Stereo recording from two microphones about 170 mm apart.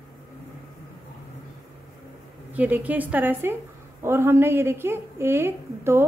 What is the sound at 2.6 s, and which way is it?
A woman's voice, 10° right (ahead or behind).